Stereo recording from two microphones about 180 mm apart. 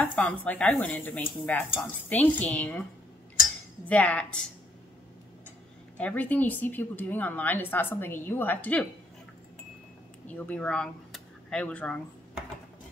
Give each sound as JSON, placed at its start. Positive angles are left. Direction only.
{"t": 0.0, "sound": "speech", "side_deg": 10}
{"t": 3.8, "sound": "speech", "side_deg": 10}
{"t": 5.9, "sound": "speech", "side_deg": 10}
{"t": 10.2, "sound": "speech", "side_deg": 10}